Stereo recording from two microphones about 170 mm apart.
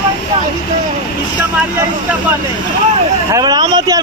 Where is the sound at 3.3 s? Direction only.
25° right (ahead or behind).